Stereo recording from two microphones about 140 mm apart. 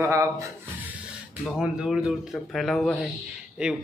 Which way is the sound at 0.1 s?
20° right (ahead or behind).